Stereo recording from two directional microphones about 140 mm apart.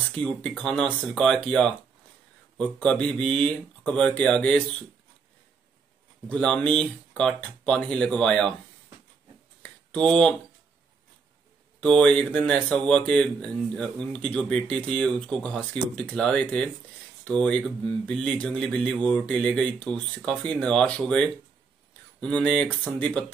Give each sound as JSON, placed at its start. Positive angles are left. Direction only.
{"t": 0.2, "sound": "speech", "side_deg": 5}
{"t": 6.2, "sound": "speech", "side_deg": 5}
{"t": 9.6, "sound": "a sound", "side_deg": 5}
{"t": 11.8, "sound": "speech", "side_deg": 10}